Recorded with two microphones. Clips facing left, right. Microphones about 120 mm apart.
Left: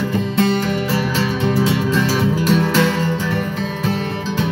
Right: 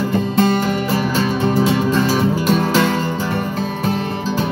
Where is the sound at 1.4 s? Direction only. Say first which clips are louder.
Right 1 dB; 40° right (ahead or behind).